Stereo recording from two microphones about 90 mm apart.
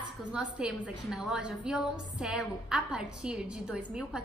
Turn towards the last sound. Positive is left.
turn(degrees=-5)  # may be behind; listen again after turning